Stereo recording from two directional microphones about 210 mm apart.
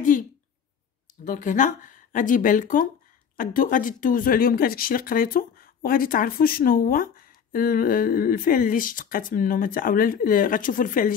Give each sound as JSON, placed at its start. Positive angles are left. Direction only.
{"t": 1.2, "sound": "speech", "side_deg": 35}